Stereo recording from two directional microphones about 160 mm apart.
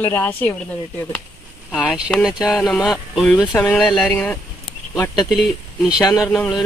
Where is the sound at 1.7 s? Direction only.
5° right (ahead or behind).